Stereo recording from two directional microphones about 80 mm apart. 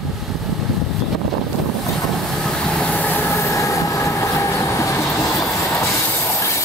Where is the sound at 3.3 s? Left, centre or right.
Left.